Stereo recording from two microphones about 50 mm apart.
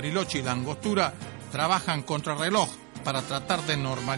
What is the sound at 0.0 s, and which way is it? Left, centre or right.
Speech, right.